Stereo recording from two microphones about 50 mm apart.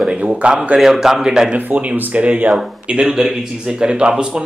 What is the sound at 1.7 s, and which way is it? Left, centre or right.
Speech, right.